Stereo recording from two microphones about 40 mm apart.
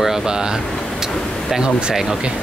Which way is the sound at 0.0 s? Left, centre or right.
Centre.